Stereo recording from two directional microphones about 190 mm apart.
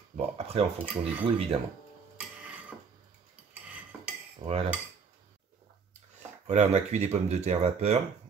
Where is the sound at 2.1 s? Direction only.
5° right (ahead or behind).